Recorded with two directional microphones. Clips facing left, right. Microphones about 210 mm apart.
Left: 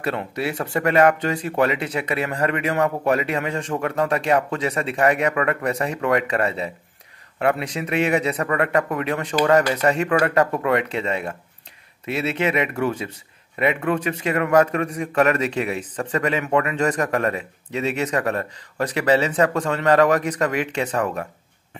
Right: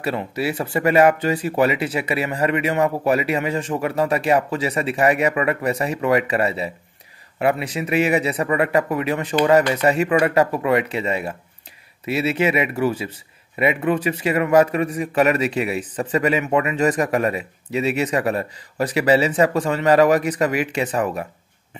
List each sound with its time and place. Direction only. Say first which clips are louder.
0.0 s a man's voice: right 2 dB; 5° right (ahead or behind)